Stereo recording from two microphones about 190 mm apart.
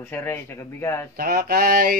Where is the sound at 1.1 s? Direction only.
50° right (ahead or behind).